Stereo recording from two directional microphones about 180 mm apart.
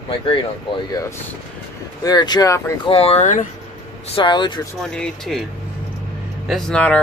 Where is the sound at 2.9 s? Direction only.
35° left (ahead or behind).